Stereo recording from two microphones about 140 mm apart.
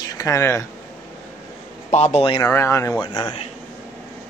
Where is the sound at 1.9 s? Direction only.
50° left (ahead or behind).